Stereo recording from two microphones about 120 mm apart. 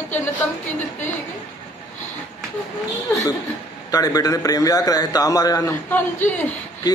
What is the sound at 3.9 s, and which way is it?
A man's voice, 30° left (ahead or behind).